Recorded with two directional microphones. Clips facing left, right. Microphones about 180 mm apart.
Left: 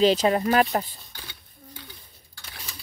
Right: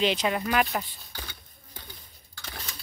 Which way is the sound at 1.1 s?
45° right (ahead or behind).